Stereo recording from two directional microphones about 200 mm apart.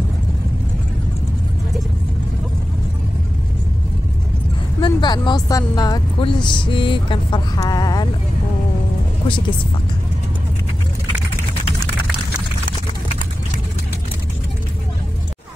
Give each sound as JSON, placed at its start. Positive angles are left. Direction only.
{"t": 4.7, "sound": "speech", "side_deg": 20}